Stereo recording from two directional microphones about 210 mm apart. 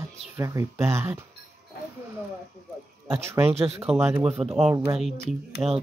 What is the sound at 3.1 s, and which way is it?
Speech, 10° right (ahead or behind).